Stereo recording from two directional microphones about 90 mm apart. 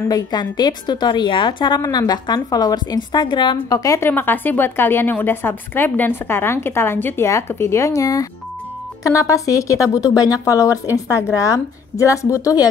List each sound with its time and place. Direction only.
0.1 s a woman's voice: 50° left (ahead or behind)
4.0 s a woman's voice: 25° left (ahead or behind)